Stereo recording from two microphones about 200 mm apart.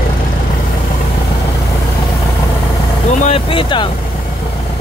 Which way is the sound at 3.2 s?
25° left (ahead or behind).